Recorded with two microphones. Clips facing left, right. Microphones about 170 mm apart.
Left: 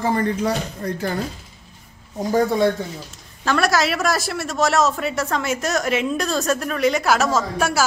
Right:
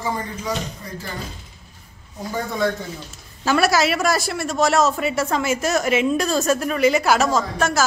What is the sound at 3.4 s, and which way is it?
A man's voice, 5° right (ahead or behind).